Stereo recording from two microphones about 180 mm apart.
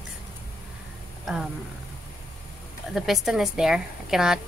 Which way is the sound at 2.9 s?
Centre (ahead or behind).